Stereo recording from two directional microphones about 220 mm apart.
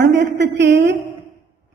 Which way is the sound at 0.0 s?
50° right (ahead or behind).